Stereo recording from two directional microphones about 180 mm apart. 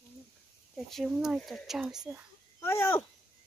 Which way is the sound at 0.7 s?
Centre (ahead or behind).